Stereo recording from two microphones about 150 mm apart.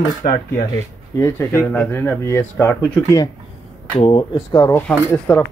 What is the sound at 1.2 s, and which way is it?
Speech, 15° left (ahead or behind).